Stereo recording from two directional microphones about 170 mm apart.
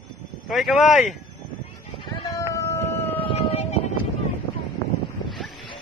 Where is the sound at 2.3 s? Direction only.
20° left (ahead or behind).